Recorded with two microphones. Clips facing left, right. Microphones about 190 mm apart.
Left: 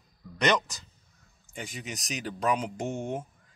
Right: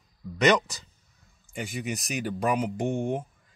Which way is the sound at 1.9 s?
55° right (ahead or behind).